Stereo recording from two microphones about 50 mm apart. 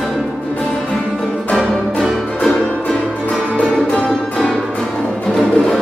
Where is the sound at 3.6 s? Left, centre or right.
Left.